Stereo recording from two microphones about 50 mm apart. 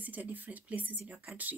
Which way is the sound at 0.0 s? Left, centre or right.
Right.